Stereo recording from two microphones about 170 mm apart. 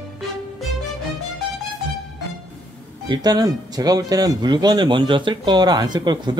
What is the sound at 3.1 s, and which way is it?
Speech, 25° right (ahead or behind).